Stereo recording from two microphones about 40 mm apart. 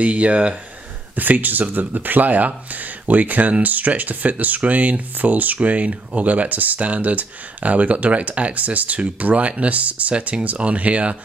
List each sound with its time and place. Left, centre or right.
0.0 s speech: right
1.1 s speech: right